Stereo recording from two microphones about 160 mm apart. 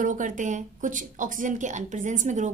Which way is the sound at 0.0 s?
55° right (ahead or behind).